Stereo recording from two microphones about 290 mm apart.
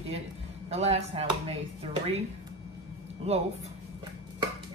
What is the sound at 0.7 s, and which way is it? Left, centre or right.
Speech, right.